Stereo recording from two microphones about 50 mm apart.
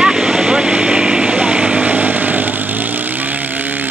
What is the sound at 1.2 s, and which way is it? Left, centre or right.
Vehicle, right.